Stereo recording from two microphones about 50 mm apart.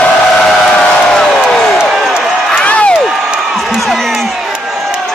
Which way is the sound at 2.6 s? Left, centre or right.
Left.